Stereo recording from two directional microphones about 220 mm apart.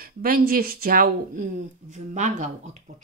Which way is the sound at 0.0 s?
40° right (ahead or behind).